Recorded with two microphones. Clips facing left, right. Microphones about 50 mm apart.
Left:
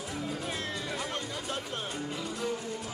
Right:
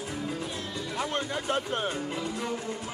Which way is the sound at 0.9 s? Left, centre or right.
Right.